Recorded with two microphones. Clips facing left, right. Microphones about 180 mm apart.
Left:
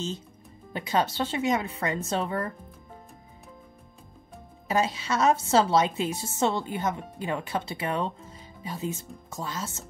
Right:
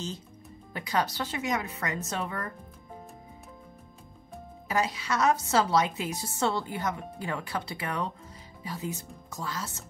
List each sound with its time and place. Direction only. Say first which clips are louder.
0.7 s a woman's voice: left 3 dB; 25° left (ahead or behind)
4.6 s a woman's voice: left 3 dB; 25° left (ahead or behind)